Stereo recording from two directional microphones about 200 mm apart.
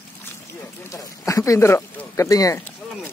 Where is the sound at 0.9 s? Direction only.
15° left (ahead or behind).